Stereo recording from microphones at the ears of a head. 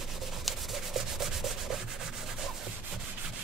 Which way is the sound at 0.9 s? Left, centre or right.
Right.